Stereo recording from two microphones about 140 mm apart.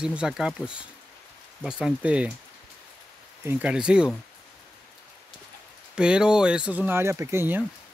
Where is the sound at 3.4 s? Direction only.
10° right (ahead or behind).